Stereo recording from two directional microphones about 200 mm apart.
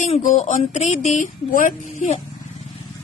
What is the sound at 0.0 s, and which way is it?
A woman's voice, 35° left (ahead or behind).